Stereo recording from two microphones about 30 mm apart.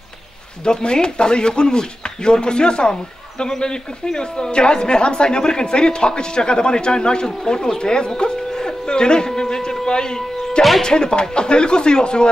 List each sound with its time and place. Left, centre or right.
0.7 s speech: left
8.2 s a sound: left
10.8 s speech: left